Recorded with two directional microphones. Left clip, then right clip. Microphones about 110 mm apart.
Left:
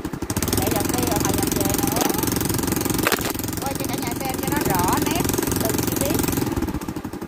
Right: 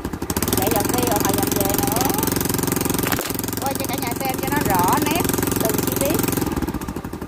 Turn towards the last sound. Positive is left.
turn(degrees=-40)  # may be behind; listen again after turning